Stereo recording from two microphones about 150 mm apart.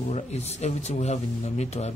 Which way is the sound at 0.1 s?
45° left (ahead or behind).